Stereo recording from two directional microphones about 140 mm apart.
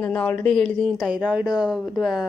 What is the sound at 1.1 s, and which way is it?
Speech, 10° right (ahead or behind).